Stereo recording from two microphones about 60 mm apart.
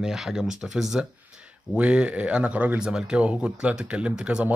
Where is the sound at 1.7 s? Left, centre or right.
Centre.